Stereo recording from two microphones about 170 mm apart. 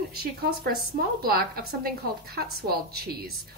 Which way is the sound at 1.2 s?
60° right (ahead or behind).